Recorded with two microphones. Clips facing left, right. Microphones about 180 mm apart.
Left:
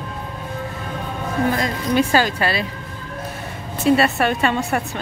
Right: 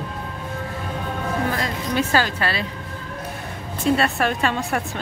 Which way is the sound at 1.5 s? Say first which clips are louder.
Left 4 dB; 15° left (ahead or behind).